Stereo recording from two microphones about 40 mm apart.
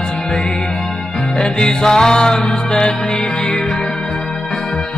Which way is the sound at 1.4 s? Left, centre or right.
Centre.